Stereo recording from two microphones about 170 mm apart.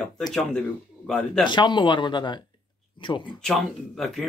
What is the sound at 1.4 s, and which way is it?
Speech, 25° left (ahead or behind).